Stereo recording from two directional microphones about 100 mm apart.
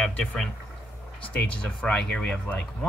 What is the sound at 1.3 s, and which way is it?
Speech, 10° left (ahead or behind).